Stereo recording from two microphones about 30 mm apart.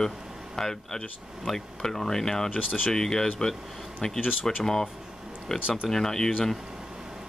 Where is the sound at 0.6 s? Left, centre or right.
Centre.